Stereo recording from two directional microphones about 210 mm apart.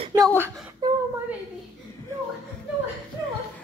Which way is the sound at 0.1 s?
15° right (ahead or behind).